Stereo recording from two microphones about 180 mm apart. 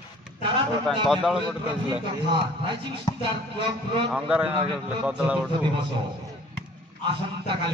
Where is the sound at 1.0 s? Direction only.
Centre (ahead or behind).